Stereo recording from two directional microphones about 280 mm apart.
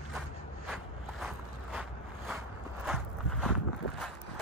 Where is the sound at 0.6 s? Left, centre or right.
Centre.